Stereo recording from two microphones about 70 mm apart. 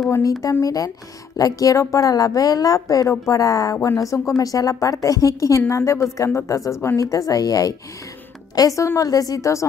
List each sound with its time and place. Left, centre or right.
0.4 s a woman's voice: left